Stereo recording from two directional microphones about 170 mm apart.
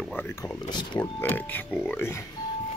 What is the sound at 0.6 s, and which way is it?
Speech, 25° left (ahead or behind).